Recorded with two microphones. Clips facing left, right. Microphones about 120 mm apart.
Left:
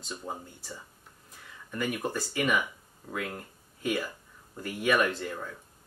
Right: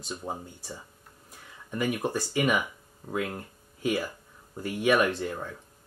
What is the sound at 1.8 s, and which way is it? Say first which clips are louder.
Speech: right 3 dB; 5° right (ahead or behind).